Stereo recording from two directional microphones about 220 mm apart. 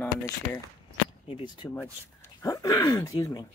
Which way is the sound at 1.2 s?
25° left (ahead or behind).